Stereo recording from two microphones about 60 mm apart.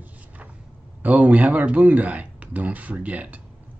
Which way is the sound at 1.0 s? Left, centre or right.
Right.